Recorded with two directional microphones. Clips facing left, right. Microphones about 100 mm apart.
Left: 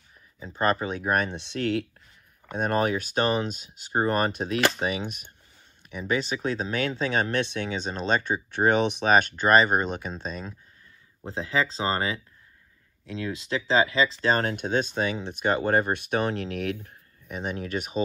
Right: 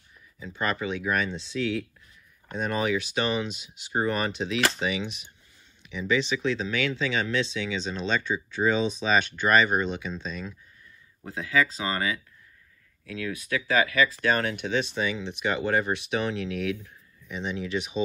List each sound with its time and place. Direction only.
0.4 s speech: 40° left (ahead or behind); by 1.9 s 60° left (ahead or behind)
2.5 s speech: 50° left (ahead or behind)
9.3 s speech: 40° left (ahead or behind)
11.2 s speech: 30° left (ahead or behind); by 18.0 s 50° left (ahead or behind)